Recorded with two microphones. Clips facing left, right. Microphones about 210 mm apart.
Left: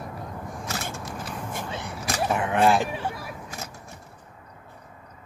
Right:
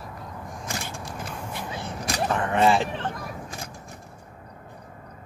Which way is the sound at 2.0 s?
10° left (ahead or behind).